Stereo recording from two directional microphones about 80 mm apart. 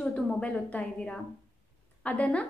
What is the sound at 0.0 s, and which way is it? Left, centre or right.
A woman's voice, centre.